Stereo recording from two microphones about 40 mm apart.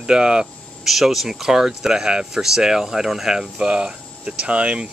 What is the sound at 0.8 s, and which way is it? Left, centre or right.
Speech, centre.